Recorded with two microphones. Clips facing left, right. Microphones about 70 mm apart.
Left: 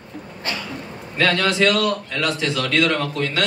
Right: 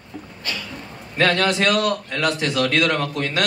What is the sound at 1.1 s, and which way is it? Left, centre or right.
A man's voice, right.